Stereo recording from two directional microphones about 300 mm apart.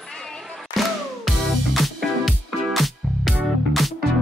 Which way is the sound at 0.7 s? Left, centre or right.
Centre.